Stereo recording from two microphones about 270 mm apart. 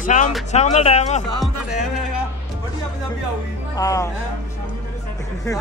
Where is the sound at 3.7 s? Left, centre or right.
Centre.